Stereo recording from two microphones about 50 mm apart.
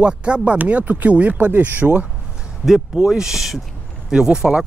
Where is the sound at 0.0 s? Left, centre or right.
Right.